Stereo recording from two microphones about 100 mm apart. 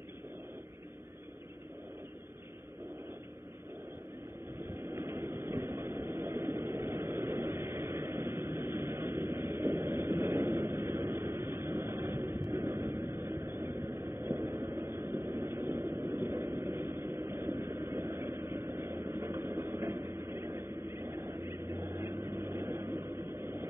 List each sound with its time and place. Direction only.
4.9 s vehicle: 35° right (ahead or behind)
18.9 s a sound: 25° right (ahead or behind)
22.4 s vehicle: 25° right (ahead or behind)